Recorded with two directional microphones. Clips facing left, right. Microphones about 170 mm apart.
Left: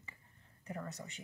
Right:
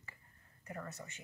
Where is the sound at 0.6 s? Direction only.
15° left (ahead or behind).